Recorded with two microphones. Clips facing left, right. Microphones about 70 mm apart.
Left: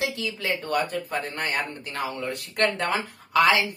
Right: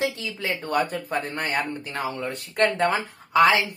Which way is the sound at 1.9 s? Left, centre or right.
Right.